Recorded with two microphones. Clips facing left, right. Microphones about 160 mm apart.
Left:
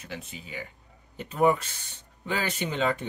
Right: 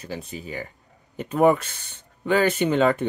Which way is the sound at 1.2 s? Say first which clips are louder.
Right 5 dB; 60° right (ahead or behind).